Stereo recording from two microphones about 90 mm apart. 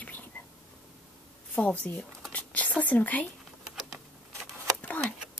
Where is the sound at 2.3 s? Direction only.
15° left (ahead or behind).